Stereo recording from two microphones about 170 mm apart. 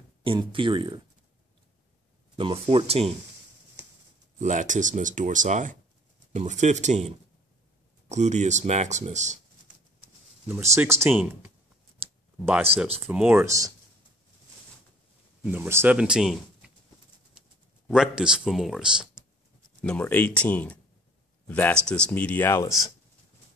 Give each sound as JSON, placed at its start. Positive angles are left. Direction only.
{"t": 0.2, "sound": "speech", "side_deg": -30}
{"t": 2.3, "sound": "speech", "side_deg": -30}
{"t": 4.4, "sound": "speech", "side_deg": -45}
{"t": 10.5, "sound": "speech", "side_deg": -15}
{"t": 12.7, "sound": "speech", "side_deg": -35}
{"t": 13.0, "sound": "speech", "side_deg": -10}
{"t": 15.4, "sound": "speech", "side_deg": -10}
{"t": 17.8, "sound": "speech", "side_deg": -5}
{"t": 19.8, "sound": "speech", "side_deg": 10}